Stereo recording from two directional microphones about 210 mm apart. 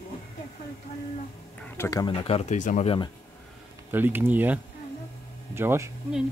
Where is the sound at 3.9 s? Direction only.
10° right (ahead or behind).